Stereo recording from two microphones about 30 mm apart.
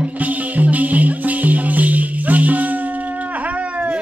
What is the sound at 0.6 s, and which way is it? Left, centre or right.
Music, right.